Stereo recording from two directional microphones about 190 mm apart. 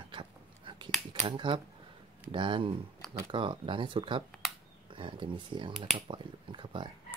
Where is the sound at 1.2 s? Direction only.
25° right (ahead or behind).